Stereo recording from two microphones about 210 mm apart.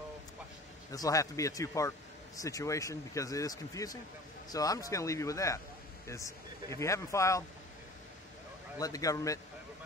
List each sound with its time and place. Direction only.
0.9 s speech: 15° left (ahead or behind)
8.7 s speech: 15° left (ahead or behind)